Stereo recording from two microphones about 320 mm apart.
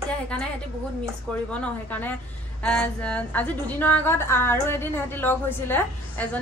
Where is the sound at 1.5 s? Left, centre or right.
Centre.